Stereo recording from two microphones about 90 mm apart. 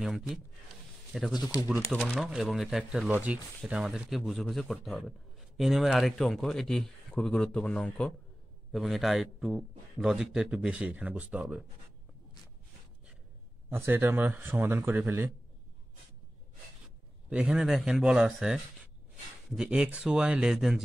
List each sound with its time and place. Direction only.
0.0 s speech: 5° right (ahead or behind)
3.1 s speech: 15° right (ahead or behind); by 8.1 s 15° left (ahead or behind)
8.7 s speech: centre (ahead or behind)
13.7 s speech: 25° right (ahead or behind)
17.3 s speech: 15° right (ahead or behind)